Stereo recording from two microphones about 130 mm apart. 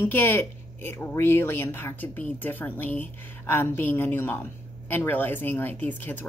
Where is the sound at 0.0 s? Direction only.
15° left (ahead or behind).